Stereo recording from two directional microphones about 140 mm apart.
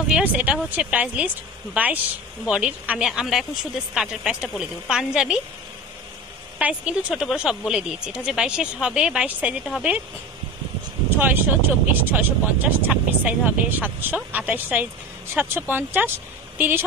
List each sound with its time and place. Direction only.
0.1 s speech: 10° right (ahead or behind)
6.6 s speech: 5° right (ahead or behind)
11.1 s speech: 15° right (ahead or behind)